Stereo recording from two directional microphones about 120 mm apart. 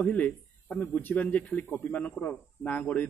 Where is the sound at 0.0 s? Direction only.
10° left (ahead or behind).